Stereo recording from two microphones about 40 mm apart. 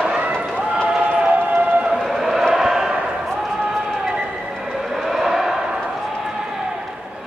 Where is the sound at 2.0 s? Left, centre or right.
Centre.